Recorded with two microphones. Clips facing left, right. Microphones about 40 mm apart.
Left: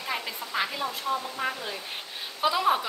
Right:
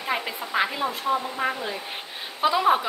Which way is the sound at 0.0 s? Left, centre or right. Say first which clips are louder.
Right 4 dB; right.